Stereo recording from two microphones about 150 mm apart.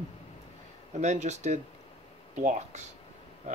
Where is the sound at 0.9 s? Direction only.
50° right (ahead or behind).